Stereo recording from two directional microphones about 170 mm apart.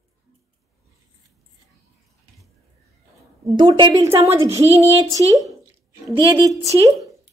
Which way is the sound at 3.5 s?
25° right (ahead or behind).